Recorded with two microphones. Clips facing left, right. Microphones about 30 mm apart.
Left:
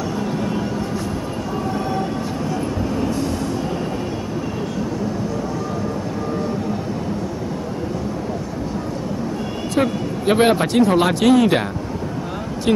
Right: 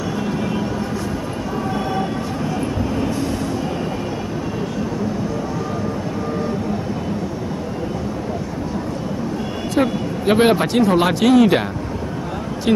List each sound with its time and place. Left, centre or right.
9.8 s speech: centre
12.7 s speech: centre